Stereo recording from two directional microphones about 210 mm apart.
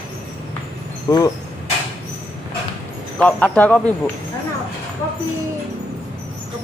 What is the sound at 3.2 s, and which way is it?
Speech, 5° left (ahead or behind).